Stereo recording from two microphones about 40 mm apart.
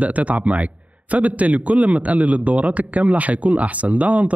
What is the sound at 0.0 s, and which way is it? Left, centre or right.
A man's voice, right.